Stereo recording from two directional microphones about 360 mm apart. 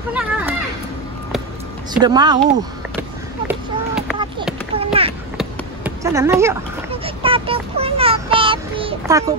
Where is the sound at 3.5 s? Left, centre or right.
Centre.